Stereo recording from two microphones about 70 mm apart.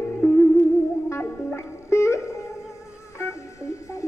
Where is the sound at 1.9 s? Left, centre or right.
Left.